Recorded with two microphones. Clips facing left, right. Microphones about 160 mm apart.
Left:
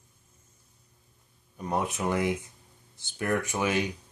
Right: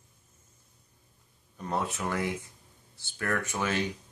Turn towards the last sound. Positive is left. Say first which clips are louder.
# left 3 dB
turn(degrees=15)  # may be behind; listen again after turning